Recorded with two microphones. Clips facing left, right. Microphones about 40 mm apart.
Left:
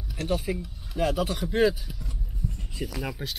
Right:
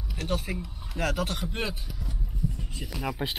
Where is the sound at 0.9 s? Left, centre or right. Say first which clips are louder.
Left 3 dB; right.